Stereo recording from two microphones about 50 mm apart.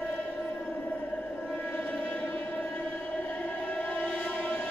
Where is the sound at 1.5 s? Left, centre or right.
Left.